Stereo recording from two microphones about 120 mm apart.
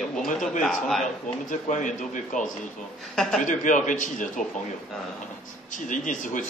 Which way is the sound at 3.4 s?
90° left.